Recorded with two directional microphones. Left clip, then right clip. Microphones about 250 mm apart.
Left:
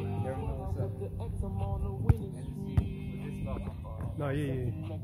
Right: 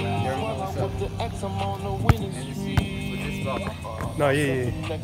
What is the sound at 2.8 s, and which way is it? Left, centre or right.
Music, centre.